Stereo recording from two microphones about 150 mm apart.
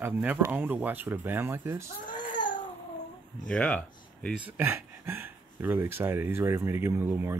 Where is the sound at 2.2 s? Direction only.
60° left (ahead or behind).